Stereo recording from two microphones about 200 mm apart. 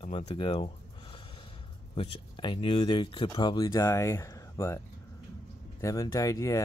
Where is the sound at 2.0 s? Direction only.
25° left (ahead or behind).